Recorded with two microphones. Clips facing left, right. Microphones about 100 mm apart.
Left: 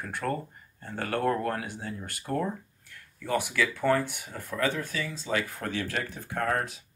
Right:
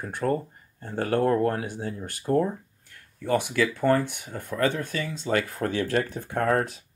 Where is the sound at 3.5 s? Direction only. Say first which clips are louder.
Right 2 dB; 40° right (ahead or behind).